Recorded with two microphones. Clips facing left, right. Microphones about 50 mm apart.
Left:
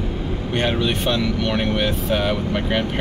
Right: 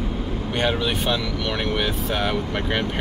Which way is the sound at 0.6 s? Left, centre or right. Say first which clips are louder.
Left 1 dB; centre.